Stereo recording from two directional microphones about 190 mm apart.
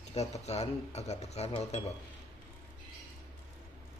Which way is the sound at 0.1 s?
35° left (ahead or behind).